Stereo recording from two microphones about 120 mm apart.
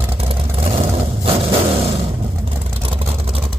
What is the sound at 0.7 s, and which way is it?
Vehicle, 50° right (ahead or behind).